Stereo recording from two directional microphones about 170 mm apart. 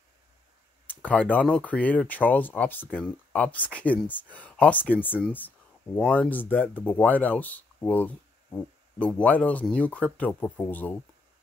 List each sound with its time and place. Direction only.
1.0 s speech: 10° left (ahead or behind)